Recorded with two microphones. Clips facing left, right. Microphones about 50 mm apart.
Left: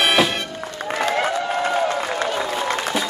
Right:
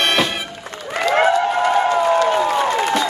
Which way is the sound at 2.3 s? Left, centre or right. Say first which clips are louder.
Right 6 dB; right.